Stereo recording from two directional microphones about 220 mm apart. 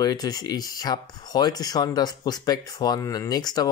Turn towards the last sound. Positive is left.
turn(degrees=20)  # may be behind; listen again after turning